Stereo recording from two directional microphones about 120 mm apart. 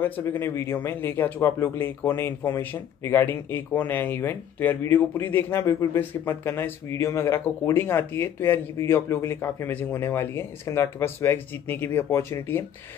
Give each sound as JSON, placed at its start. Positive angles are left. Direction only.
{"t": 0.2, "sound": "speech", "side_deg": 20}